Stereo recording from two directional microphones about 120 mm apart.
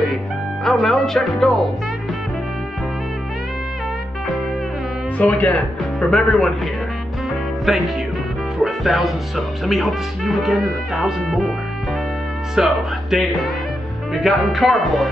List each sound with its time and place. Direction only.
0.7 s speech: centre (ahead or behind)
5.1 s speech: 10° left (ahead or behind)
7.7 s speech: centre (ahead or behind)
8.6 s music: centre (ahead or behind)
9.7 s speech: centre (ahead or behind)
12.5 s speech: centre (ahead or behind)